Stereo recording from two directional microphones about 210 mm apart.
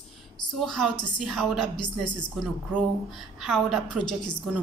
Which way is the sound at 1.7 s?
20° left (ahead or behind).